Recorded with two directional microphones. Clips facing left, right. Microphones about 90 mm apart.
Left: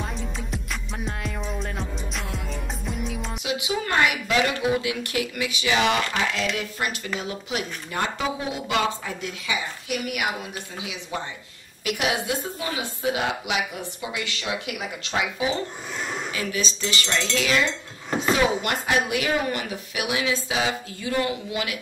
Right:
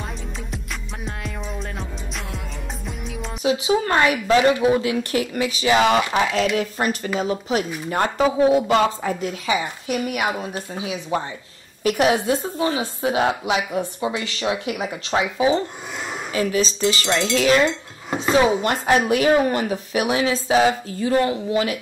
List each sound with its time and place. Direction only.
1.0 s music: centre (ahead or behind)
3.4 s speech: 35° right (ahead or behind)
17.1 s a sound: 50° right (ahead or behind)
17.4 s speech: 40° right (ahead or behind)